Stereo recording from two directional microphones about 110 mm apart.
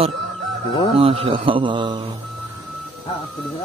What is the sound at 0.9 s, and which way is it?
A man's voice, 60° right (ahead or behind).